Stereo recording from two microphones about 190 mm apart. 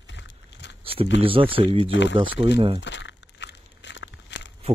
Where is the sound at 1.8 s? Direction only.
70° left (ahead or behind).